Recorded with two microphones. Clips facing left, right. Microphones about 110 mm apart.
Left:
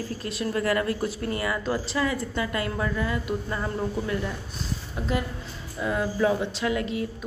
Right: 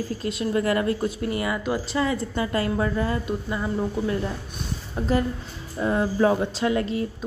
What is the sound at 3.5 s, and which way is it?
Speech, 5° right (ahead or behind).